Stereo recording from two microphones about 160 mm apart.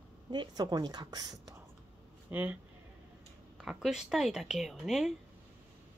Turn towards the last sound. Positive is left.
turn(degrees=0)  # may be behind; listen again after turning